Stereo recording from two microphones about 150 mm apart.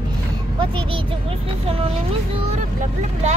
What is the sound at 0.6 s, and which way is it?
Speech, 30° right (ahead or behind).